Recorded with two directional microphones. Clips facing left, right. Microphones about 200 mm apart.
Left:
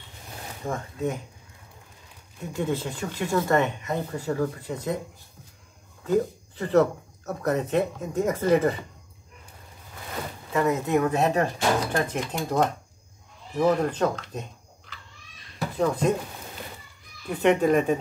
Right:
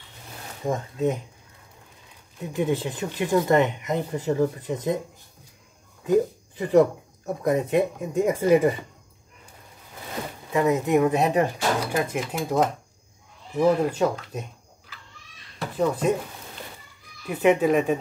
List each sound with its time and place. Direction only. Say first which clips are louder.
0.7 s speech: right 4 dB; 20° right (ahead or behind)
2.4 s speech: right 3 dB; 15° right (ahead or behind)
6.0 s speech: right 3 dB; 15° right (ahead or behind)
10.5 s speech: right 2 dB; 15° right (ahead or behind)
15.8 s speech: right 1 dB; 5° right (ahead or behind)
17.3 s speech: right 1 dB; 5° right (ahead or behind)